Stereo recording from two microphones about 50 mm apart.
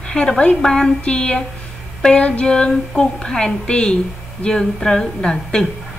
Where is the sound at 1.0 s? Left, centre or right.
Centre.